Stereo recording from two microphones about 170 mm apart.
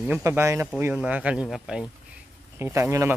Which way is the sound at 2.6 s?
15° right (ahead or behind).